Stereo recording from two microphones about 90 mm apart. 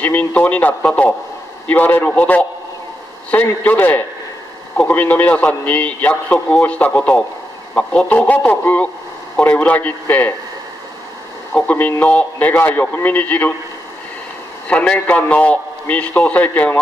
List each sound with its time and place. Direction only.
0.0 s a man's voice: 20° left (ahead or behind)
11.5 s a man's voice: 15° left (ahead or behind)
14.7 s a man's voice: 15° left (ahead or behind)